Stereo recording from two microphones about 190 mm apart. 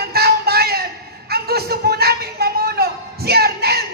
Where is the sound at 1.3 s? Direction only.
55° right (ahead or behind).